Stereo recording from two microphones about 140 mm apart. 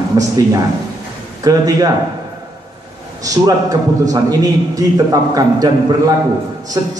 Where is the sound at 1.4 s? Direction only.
25° right (ahead or behind).